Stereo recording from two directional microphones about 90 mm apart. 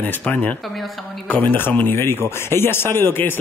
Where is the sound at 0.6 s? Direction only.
Centre (ahead or behind).